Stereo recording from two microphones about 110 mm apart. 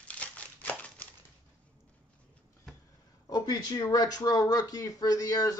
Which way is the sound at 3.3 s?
35° left (ahead or behind).